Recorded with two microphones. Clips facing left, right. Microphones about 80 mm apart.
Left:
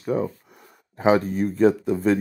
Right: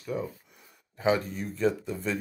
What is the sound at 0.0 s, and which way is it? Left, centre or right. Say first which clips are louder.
Speech: left 9 dB; left.